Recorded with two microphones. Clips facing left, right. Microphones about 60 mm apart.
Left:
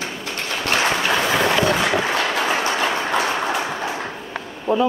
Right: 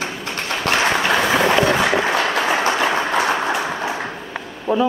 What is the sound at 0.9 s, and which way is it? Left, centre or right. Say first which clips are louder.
Vehicle: right 2 dB; right.